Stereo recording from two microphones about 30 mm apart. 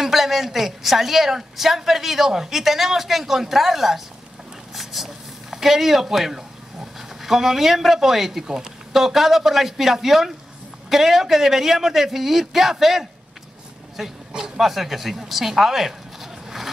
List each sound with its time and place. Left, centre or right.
0.0 s a woman's voice: centre
8.5 s speech: right
8.9 s a woman's voice: centre
14.6 s speech: centre